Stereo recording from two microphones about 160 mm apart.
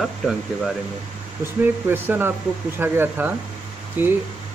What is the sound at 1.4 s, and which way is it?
Speech, 15° right (ahead or behind).